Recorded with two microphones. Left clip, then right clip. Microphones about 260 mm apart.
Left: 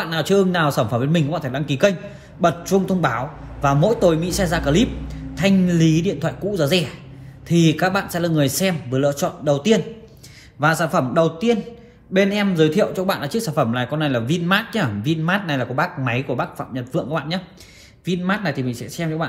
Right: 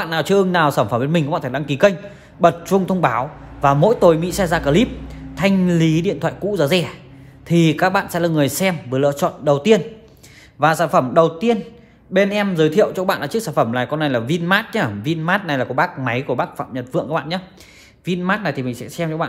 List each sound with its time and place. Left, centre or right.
0.0 s speech: right